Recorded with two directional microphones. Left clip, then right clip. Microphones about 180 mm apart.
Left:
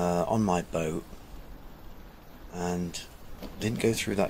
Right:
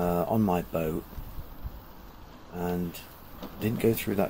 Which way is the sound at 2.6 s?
Centre (ahead or behind).